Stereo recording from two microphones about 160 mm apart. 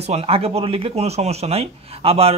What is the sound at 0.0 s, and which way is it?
Speech, 40° right (ahead or behind).